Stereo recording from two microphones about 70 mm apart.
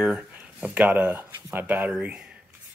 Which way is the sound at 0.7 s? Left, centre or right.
Right.